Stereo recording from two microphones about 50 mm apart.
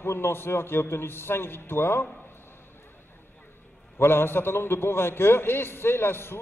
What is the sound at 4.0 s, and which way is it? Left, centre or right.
A man's voice, left.